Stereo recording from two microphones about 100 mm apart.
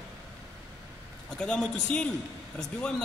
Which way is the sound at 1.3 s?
5° left (ahead or behind).